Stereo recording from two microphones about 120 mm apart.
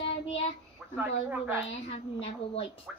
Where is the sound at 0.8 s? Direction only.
5° right (ahead or behind).